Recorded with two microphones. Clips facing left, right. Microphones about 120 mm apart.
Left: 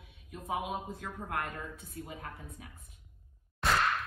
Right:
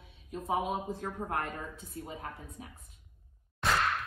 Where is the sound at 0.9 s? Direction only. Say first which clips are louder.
Right 3 dB; 25° right (ahead or behind).